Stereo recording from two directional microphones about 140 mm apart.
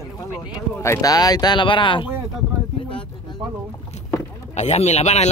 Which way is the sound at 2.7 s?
40° left (ahead or behind).